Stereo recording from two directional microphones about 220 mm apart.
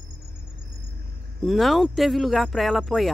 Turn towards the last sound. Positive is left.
turn(degrees=0)  # may be behind; listen again after turning